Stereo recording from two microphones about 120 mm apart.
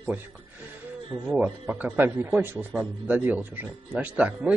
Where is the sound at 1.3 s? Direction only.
10° right (ahead or behind).